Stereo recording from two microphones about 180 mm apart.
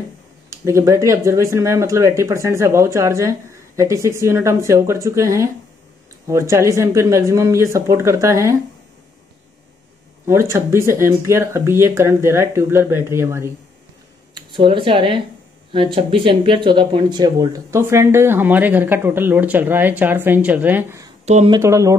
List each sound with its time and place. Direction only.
0.5 s speech: 15° right (ahead or behind)
10.2 s speech: 15° right (ahead or behind)
14.3 s speech: 25° right (ahead or behind)